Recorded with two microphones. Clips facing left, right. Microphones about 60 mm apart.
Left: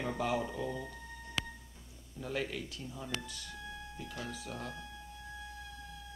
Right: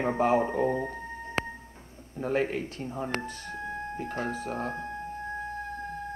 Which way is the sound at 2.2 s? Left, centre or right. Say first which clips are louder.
Right 10 dB; right.